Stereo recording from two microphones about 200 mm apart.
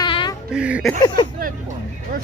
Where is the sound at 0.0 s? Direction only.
25° left (ahead or behind).